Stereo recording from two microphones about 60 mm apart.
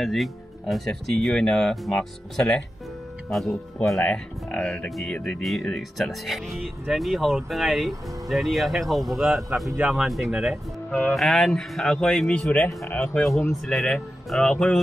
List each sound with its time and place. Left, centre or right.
0.0 s speech: centre
4.0 s speech: centre
4.8 s speech: centre
9.5 s speech: right
9.9 s speech: centre
10.9 s speech: left
11.1 s speech: centre
12.3 s speech: left
13.7 s speech: centre